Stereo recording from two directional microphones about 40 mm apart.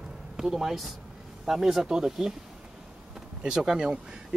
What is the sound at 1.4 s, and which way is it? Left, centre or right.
Speech, centre.